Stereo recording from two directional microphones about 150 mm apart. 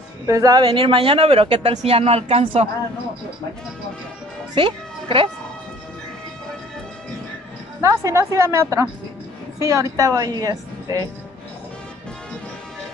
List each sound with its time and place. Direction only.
0.3 s speech: 25° right (ahead or behind)
4.6 s a child's voice: 35° right (ahead or behind)
7.8 s a woman's voice: 20° right (ahead or behind)